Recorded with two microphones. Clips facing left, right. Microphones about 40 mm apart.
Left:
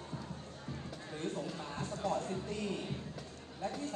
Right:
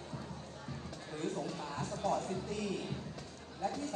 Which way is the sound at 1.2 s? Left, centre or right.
Left.